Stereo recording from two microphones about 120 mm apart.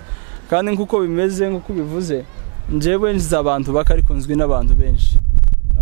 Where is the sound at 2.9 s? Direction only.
15° right (ahead or behind).